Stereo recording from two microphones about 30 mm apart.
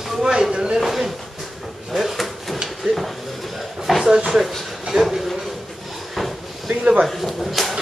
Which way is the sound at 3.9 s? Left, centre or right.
Centre.